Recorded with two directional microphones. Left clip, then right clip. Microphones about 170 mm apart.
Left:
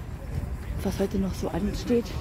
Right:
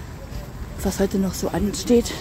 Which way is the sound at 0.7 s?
20° right (ahead or behind).